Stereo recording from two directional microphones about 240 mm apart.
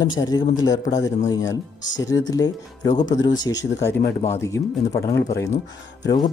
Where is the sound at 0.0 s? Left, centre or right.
Centre.